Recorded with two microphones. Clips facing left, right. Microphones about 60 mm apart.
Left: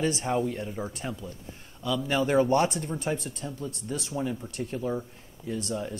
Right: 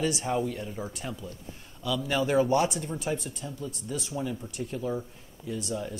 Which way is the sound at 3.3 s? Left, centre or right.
Left.